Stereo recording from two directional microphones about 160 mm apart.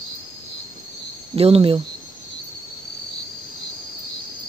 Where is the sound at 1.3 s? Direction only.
35° right (ahead or behind).